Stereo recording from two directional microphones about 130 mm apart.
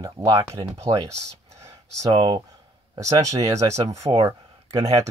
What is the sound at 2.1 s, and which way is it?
Speech, 40° right (ahead or behind).